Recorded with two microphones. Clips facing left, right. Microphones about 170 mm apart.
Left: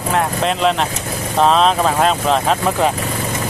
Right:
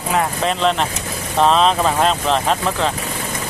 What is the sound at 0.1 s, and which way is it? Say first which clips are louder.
Speech: left 1 dB; centre (ahead or behind).